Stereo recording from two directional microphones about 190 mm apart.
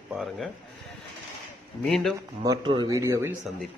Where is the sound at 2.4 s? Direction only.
25° right (ahead or behind).